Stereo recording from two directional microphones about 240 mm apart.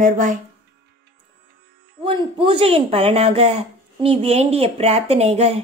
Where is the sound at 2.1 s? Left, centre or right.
Right.